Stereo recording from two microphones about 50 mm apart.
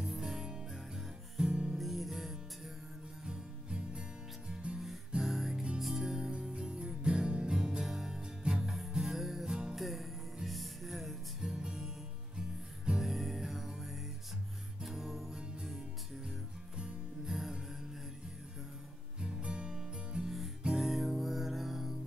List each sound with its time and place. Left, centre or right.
0.0 s music: centre
1.8 s music: centre
3.3 s music: centre
4.7 s music: centre
8.7 s music: centre
9.8 s music: centre
11.4 s music: centre
13.0 s music: centre
16.3 s music: centre
19.1 s music: centre
20.2 s music: centre